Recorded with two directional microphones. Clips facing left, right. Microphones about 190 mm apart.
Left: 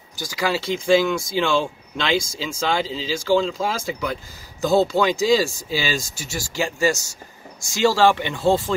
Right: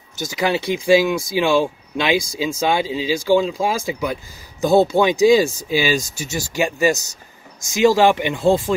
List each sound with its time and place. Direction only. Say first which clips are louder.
0.1 s speech: right 3 dB; 20° right (ahead or behind)